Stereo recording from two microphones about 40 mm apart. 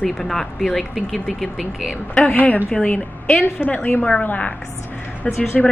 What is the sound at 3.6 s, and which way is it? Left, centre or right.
A woman's voice, left.